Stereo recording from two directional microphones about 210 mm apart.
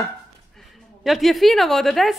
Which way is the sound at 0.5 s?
Centre (ahead or behind).